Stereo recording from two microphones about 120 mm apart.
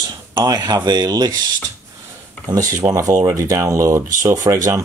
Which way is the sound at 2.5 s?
30° right (ahead or behind).